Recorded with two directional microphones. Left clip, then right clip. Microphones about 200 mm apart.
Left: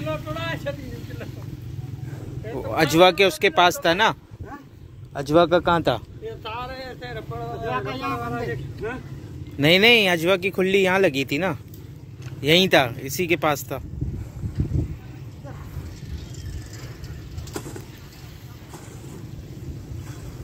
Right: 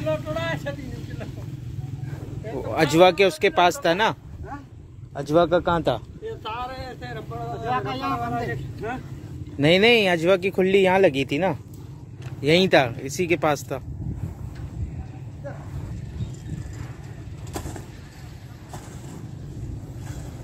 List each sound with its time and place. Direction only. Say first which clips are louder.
0.0 s vehicle: right 3 dB; 55° right (ahead or behind)
2.5 s speech: left 1 dB; centre (ahead or behind)
5.1 s speech: left 2 dB; 15° left (ahead or behind)
6.2 s vehicle: right 1 dB; 60° right (ahead or behind)
7.7 s speech: right 3 dB; 35° right (ahead or behind)
8.2 s speech: right 1 dB; 45° right (ahead or behind)
9.6 s speech: left 1 dB; centre (ahead or behind)